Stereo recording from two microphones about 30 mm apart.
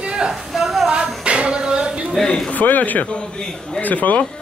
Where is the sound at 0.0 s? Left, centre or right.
Right.